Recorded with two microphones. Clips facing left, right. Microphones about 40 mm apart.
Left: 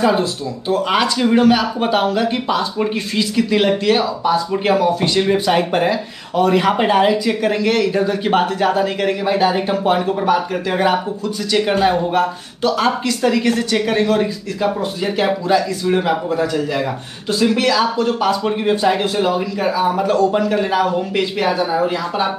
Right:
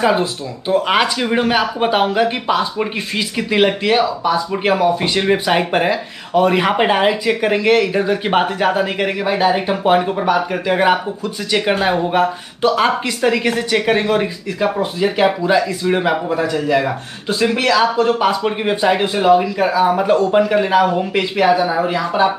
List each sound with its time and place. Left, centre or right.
0.0 s speech: centre